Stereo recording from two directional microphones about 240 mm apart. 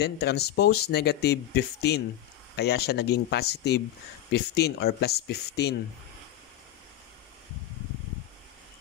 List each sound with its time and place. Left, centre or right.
0.0 s speech: left